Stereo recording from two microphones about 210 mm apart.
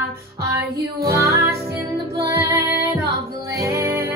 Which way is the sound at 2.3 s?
15° right (ahead or behind).